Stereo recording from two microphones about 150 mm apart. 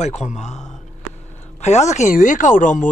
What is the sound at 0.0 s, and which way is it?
Speech, 50° left (ahead or behind).